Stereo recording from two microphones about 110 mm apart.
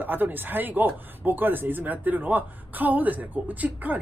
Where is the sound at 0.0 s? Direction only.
15° right (ahead or behind).